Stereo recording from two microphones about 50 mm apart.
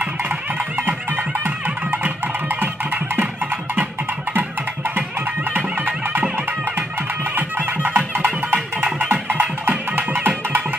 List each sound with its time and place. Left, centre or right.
0.0 s music: right
4.3 s music: right
7.3 s music: right